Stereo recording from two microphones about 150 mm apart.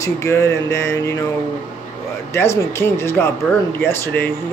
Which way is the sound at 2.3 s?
15° left (ahead or behind).